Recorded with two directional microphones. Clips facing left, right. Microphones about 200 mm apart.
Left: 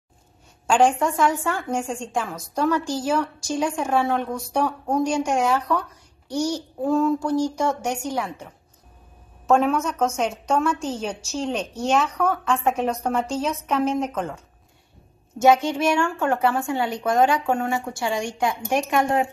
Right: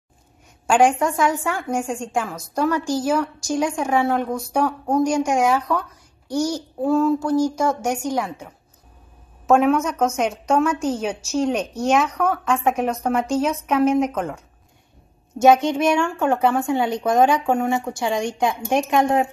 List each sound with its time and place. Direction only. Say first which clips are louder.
0.7 s a woman's voice: right 2 dB; 10° right (ahead or behind)
6.5 s a sound: right 2 dB; centre (ahead or behind)
7.2 s a woman's voice: right 3 dB; 10° right (ahead or behind)
9.5 s a woman's voice: right 3 dB; 5° right (ahead or behind)
15.4 s speech: right 3 dB; 20° right (ahead or behind)